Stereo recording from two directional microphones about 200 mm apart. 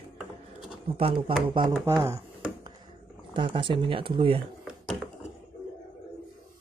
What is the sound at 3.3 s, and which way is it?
Speech, 25° right (ahead or behind).